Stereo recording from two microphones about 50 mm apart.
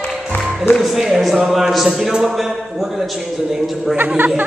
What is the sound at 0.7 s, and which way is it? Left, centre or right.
Speech, centre.